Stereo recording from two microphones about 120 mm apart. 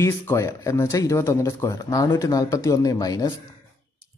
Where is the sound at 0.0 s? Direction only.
25° left (ahead or behind).